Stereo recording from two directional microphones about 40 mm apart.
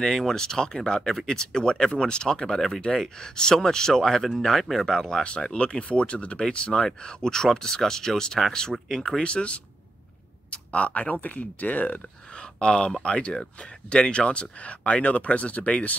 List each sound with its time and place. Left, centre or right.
0.0 s speech: centre
4.9 s speech: centre
6.7 s speech: centre
9.2 s speech: left
12.5 s speech: left